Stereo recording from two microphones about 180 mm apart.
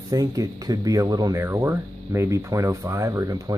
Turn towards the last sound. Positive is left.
turn(degrees=-20)  # may be behind; listen again after turning